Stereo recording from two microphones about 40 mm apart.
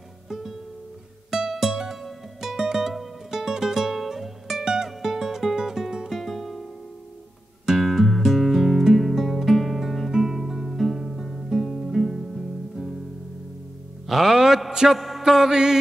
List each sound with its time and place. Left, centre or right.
0.3 s music: centre
7.8 s music: centre
10.1 s guitar: centre
14.0 s music: centre
14.9 s a sound: centre
15.5 s music: centre